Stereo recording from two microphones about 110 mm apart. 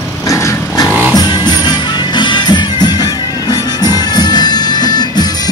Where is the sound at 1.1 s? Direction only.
40° left (ahead or behind).